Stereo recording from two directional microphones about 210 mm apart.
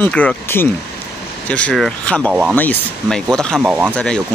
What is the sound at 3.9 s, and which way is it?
Speech, 5° left (ahead or behind).